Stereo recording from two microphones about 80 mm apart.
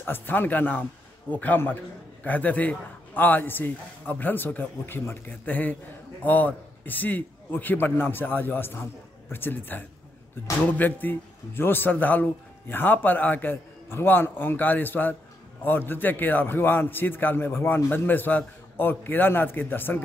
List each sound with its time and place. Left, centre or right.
0.0 s a man's voice: left